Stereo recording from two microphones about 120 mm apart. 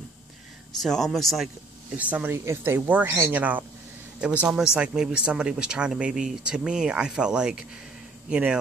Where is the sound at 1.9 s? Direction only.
10° right (ahead or behind).